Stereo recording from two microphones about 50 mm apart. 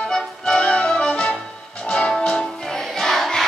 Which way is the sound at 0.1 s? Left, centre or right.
Centre.